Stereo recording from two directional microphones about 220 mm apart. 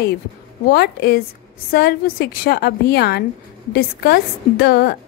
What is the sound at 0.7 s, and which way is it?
A woman's voice, 45° left (ahead or behind).